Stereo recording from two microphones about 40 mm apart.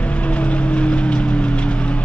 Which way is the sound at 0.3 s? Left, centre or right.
Left.